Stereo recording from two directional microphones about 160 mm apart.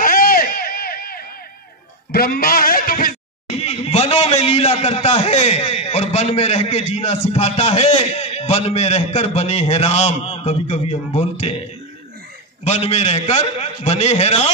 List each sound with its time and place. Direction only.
0.0 s a sound: 60° left (ahead or behind)
2.1 s a man's voice: 70° left (ahead or behind)
3.6 s a man's voice: 40° left (ahead or behind)
12.6 s a man's voice: 40° left (ahead or behind)